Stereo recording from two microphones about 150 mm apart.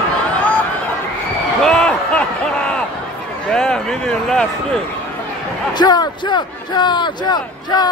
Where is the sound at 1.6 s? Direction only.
5° left (ahead or behind).